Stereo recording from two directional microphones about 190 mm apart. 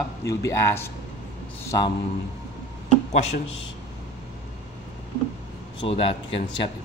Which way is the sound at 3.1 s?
35° left (ahead or behind).